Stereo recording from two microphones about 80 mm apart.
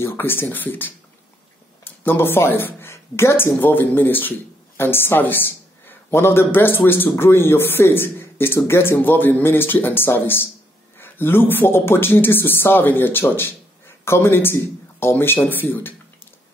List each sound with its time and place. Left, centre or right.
0.0 s a man's voice: left